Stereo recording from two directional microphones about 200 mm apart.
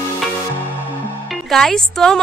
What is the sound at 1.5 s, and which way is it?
Music, centre (ahead or behind).